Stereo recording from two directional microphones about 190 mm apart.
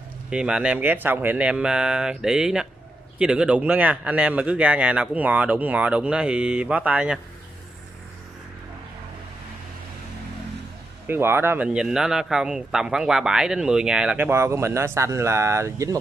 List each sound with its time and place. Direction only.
0.3 s speech: 5° right (ahead or behind)
11.1 s speech: 10° right (ahead or behind)